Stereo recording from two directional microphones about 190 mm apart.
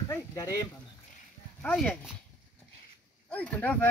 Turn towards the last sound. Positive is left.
turn(degrees=5)  # may be behind; listen again after turning